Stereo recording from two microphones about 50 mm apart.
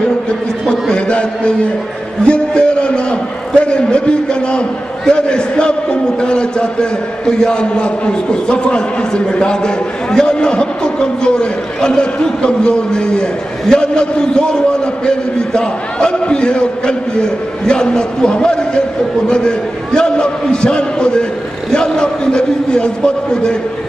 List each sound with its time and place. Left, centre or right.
0.3 s a man's voice: centre